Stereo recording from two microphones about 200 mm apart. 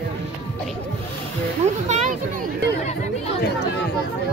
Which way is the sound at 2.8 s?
35° left (ahead or behind).